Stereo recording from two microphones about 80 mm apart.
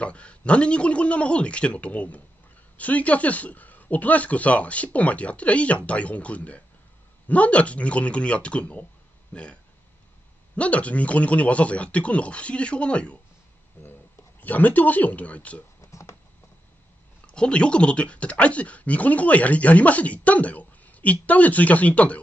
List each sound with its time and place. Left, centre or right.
0.0 s speech: centre
14.4 s speech: left
15.8 s a sound: left
17.3 s speech: centre